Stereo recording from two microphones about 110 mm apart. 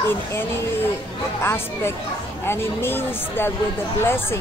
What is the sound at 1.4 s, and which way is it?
Speech, 25° left (ahead or behind).